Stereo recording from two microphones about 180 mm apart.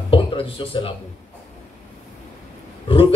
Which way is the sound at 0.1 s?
30° left (ahead or behind).